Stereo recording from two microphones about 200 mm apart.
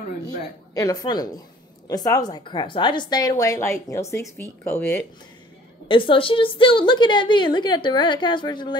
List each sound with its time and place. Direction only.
0.4 s a woman's voice: 15° left (ahead or behind)
5.9 s a woman's voice: 25° left (ahead or behind)